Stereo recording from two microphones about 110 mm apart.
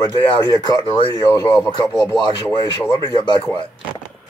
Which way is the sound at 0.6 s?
40° left (ahead or behind).